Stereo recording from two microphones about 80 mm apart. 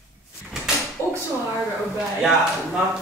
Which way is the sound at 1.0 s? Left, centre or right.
Left.